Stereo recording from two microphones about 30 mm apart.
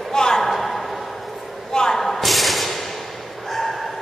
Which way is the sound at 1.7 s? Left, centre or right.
Left.